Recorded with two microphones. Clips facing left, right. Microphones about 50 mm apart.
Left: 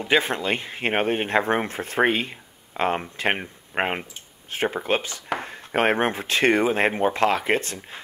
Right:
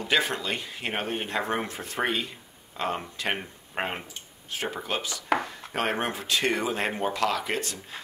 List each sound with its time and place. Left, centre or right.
0.0 s speech: left